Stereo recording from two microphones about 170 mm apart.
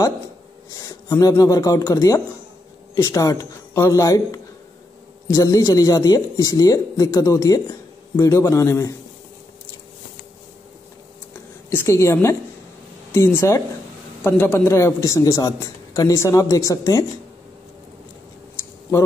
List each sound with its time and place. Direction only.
0.7 s a man's voice: 20° left (ahead or behind)
11.7 s a man's voice: 15° left (ahead or behind)